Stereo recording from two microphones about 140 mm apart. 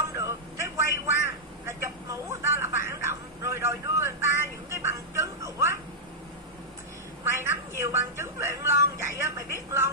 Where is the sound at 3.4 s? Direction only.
20° right (ahead or behind).